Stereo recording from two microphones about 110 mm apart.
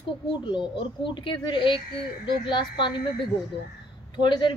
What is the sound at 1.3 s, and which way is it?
A woman's voice, 50° left (ahead or behind).